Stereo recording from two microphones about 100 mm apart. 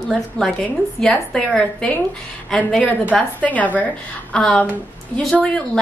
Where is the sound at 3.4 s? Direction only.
15° left (ahead or behind).